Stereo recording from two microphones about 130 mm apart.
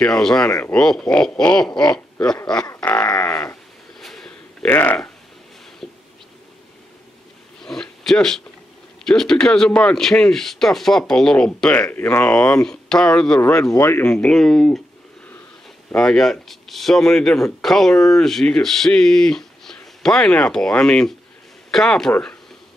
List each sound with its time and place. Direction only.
0.0 s speech: 5° left (ahead or behind)
0.5 s speech: 20° left (ahead or behind)
0.7 s speech: 5° left (ahead or behind)
2.8 s livestock: 15° left (ahead or behind)
4.0 s a sound: centre (ahead or behind)
4.6 s speech: 15° left (ahead or behind)
5.8 s a sound: centre (ahead or behind)
7.6 s a sound: 5° left (ahead or behind)
9.0 s speech: 5° left (ahead or behind)
13.4 s speech: 25° left (ahead or behind)
14.1 s speech: 5° left (ahead or behind)
15.9 s speech: 5° left (ahead or behind)